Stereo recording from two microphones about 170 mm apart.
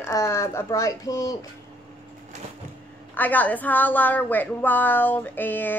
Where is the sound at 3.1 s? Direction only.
10° left (ahead or behind).